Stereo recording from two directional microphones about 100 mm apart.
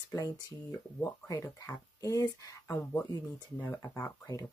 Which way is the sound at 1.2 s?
35° left (ahead or behind).